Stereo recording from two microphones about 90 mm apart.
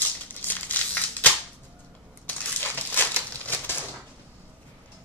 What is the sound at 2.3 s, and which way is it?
Crumpling, 20° left (ahead or behind).